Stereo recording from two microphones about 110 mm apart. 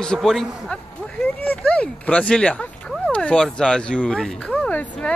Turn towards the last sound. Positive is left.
turn(degrees=10)  # may be behind; listen again after turning